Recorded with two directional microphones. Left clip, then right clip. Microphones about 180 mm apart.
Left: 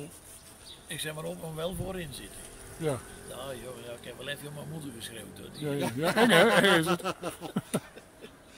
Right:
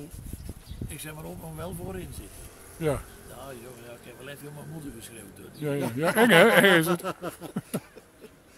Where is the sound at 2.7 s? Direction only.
30° right (ahead or behind).